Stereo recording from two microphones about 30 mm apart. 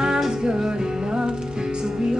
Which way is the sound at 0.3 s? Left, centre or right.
Right.